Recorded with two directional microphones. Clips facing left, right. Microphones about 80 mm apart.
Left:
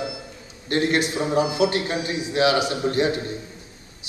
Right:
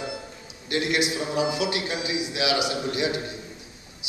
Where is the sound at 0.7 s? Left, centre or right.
Left.